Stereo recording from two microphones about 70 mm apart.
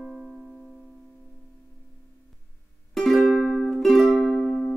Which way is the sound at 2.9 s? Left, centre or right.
Centre.